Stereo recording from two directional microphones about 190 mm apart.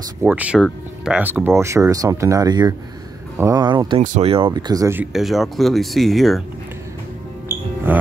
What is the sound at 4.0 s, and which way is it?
Speech, 45° right (ahead or behind).